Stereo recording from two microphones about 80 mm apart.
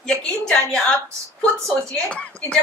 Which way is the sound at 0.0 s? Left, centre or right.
Centre.